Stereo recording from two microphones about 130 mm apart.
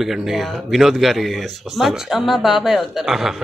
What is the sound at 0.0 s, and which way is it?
Speech, centre (ahead or behind).